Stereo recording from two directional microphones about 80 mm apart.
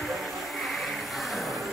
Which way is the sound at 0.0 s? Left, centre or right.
Centre.